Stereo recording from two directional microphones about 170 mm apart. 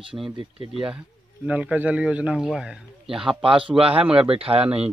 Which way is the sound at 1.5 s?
10° right (ahead or behind).